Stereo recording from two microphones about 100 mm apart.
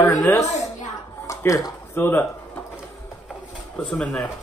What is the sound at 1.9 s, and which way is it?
Speech, 25° left (ahead or behind).